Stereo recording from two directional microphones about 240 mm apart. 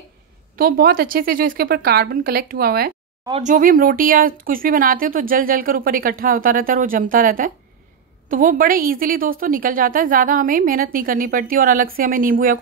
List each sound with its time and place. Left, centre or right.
0.6 s speech: right
3.3 s speech: right